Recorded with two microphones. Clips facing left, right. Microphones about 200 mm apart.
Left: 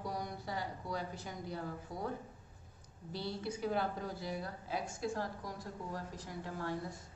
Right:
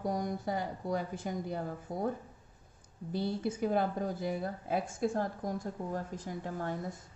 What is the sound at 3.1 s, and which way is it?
A woman's voice, 50° right (ahead or behind).